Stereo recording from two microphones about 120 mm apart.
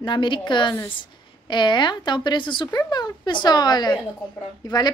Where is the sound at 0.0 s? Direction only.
40° left (ahead or behind).